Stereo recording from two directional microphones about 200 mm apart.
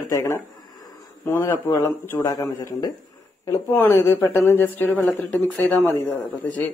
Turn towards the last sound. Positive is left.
turn(degrees=10)  # may be behind; listen again after turning